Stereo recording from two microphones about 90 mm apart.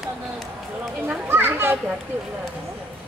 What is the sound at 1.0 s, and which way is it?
Speech, 25° right (ahead or behind).